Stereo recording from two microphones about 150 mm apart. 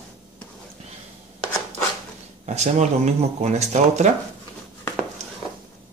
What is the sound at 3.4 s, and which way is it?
Speech, 50° right (ahead or behind).